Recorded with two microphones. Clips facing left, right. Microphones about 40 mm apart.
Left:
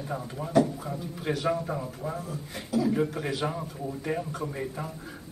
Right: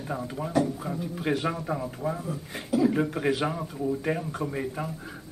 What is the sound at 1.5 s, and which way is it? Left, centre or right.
A man's voice, centre.